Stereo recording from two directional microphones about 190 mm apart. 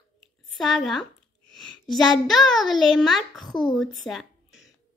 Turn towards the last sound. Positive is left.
turn(degrees=0)  # may be behind; listen again after turning